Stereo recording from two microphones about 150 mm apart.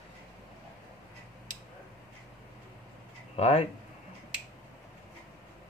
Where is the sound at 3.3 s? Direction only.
45° left (ahead or behind).